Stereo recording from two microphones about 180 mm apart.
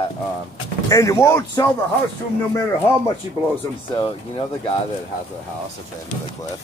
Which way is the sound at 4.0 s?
30° left (ahead or behind).